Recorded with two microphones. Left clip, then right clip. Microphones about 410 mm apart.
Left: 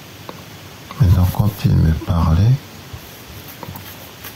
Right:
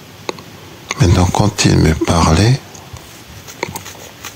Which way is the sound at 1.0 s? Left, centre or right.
Right.